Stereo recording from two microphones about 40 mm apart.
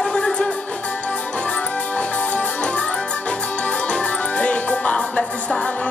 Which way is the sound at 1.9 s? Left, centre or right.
Left.